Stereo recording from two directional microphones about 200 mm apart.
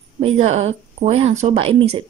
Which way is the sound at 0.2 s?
30° right (ahead or behind).